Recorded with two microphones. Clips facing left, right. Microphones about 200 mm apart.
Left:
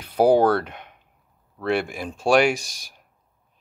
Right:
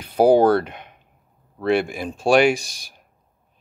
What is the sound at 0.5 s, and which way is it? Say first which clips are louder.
Speech: right 4 dB; 10° right (ahead or behind).